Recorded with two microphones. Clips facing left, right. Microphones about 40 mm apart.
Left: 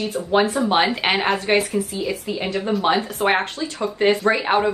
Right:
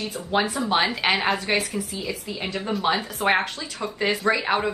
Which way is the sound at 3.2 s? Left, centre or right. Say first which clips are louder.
Left 2 dB; left.